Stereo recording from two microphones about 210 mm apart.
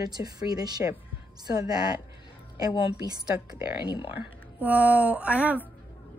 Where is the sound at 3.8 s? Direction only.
20° left (ahead or behind).